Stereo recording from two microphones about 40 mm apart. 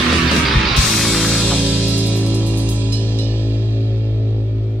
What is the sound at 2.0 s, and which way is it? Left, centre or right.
Music, right.